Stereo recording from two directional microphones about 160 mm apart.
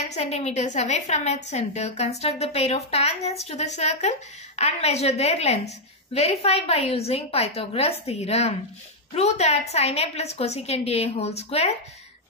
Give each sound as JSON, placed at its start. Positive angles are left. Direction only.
{"t": 0.1, "sound": "a woman's voice", "side_deg": 40}